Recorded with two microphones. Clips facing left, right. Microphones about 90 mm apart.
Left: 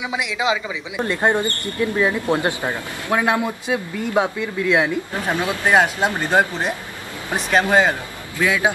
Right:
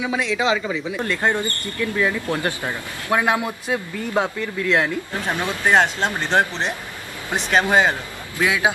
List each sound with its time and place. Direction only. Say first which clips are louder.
0.0 s speech: right 1 dB; 15° left (ahead or behind)
3.1 s speech: left 1 dB; 10° right (ahead or behind)
3.4 s speech: left 2 dB; 10° left (ahead or behind)
8.4 s a man's voice: left 1 dB; 20° right (ahead or behind)